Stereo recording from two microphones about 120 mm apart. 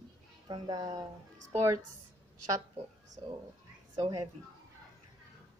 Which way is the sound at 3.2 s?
40° right (ahead or behind).